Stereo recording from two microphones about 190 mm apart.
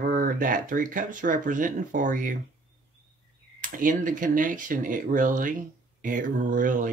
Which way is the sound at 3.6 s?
45° right (ahead or behind).